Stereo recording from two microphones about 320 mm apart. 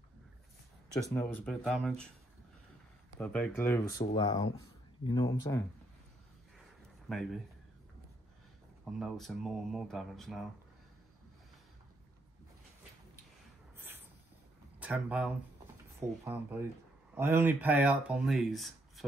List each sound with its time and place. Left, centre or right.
1.1 s speech: centre
3.2 s speech: centre
4.0 s speech: centre
7.1 s speech: centre
9.0 s speech: centre
13.7 s a sound: centre
14.8 s speech: centre